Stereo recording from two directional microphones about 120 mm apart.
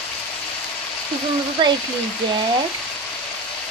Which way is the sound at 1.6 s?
40° right (ahead or behind).